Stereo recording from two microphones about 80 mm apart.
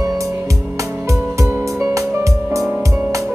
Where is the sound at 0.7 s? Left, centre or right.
Right.